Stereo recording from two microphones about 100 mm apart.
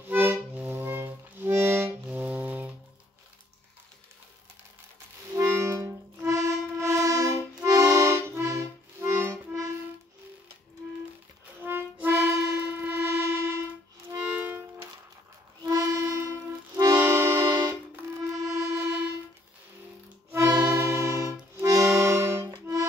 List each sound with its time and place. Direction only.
0.1 s music: 20° right (ahead or behind)
5.8 s music: 30° right (ahead or behind)
11.6 s music: 20° right (ahead or behind)
14.1 s music: 15° right (ahead or behind)
15.6 s accordion: 35° right (ahead or behind)
20.6 s music: 30° right (ahead or behind)
21.5 s accordion: 30° right (ahead or behind)